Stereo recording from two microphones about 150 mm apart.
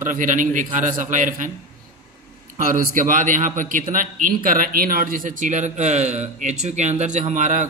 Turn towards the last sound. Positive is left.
turn(degrees=-55)  # may be behind; listen again after turning